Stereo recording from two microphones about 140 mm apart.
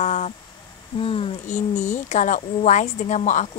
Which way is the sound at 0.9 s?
40° left (ahead or behind).